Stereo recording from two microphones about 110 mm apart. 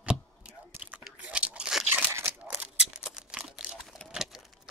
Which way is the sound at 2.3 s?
15° right (ahead or behind).